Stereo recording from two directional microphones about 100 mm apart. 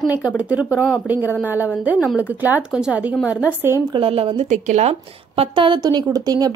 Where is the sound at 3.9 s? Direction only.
70° right (ahead or behind).